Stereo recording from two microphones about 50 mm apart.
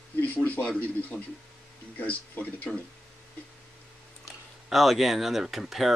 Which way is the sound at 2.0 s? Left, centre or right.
Left.